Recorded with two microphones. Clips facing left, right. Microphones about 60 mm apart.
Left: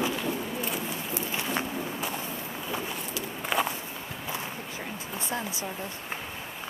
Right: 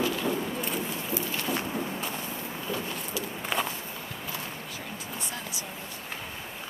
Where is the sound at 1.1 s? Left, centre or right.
Centre.